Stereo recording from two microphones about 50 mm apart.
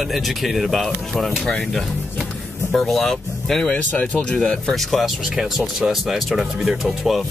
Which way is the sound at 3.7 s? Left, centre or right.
Left.